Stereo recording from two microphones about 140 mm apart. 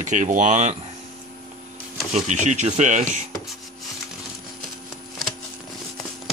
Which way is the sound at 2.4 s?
60° right (ahead or behind).